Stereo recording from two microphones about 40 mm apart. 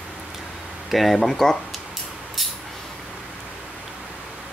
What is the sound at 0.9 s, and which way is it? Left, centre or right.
Speech, centre.